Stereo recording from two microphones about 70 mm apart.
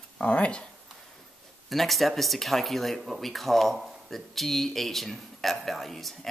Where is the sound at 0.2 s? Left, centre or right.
Centre.